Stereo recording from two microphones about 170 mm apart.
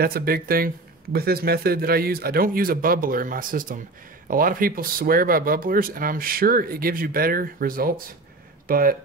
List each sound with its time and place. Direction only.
0.0 s speech: 60° right (ahead or behind)